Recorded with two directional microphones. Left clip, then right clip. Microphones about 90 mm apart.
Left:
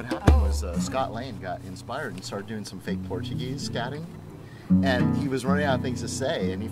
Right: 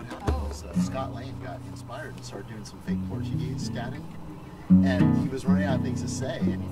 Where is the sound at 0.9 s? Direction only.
40° left (ahead or behind).